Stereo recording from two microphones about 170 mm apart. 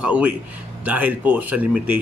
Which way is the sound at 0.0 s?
5° right (ahead or behind).